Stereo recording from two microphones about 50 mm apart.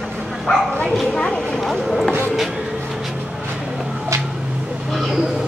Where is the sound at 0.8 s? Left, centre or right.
Centre.